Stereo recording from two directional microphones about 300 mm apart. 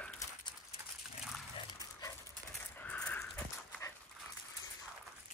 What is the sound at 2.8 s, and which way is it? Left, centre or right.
Dog, centre.